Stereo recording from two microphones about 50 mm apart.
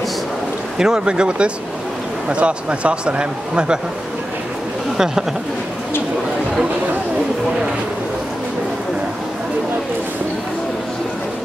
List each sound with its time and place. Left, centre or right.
0.7 s speech: centre
4.9 s speech: centre